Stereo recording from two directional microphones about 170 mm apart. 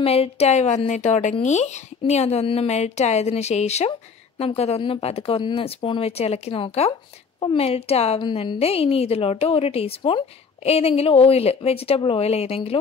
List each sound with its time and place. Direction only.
0.0 s a woman's voice: 35° left (ahead or behind)